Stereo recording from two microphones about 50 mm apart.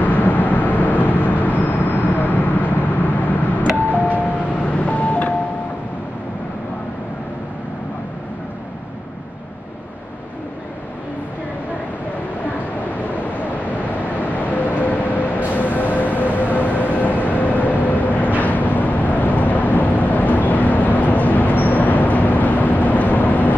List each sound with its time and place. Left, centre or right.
0.0 s vehicle: left
14.2 s vehicle: left